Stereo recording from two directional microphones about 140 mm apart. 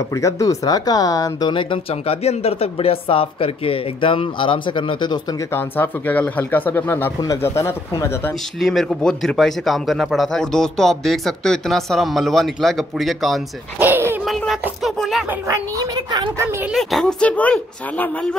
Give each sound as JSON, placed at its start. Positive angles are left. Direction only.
{"t": 0.1, "sound": "speech", "side_deg": 20}
{"t": 5.5, "sound": "speech", "side_deg": 15}
{"t": 8.5, "sound": "speech", "side_deg": 0}
{"t": 13.7, "sound": "a sound", "side_deg": -15}
{"t": 14.2, "sound": "a sound", "side_deg": 0}
{"t": 14.8, "sound": "music", "side_deg": 0}
{"t": 15.2, "sound": "speech", "side_deg": -25}
{"t": 16.3, "sound": "speech", "side_deg": -15}
{"t": 16.7, "sound": "speech", "side_deg": 5}